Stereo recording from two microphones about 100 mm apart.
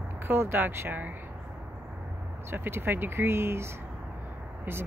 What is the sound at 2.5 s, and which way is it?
Speech, 25° right (ahead or behind).